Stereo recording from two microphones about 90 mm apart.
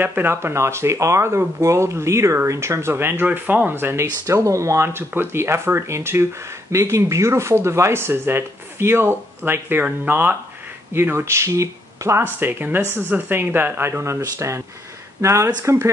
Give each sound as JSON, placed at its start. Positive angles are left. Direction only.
{"t": 0.0, "sound": "speech", "side_deg": -25}
{"t": 15.2, "sound": "speech", "side_deg": -30}